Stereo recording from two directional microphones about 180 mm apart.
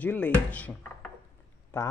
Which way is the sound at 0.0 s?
10° left (ahead or behind).